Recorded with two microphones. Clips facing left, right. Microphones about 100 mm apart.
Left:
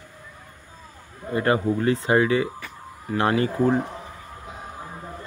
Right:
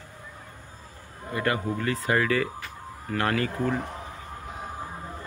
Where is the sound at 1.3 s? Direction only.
30° left (ahead or behind).